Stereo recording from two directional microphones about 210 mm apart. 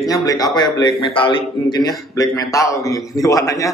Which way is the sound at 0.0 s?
15° left (ahead or behind).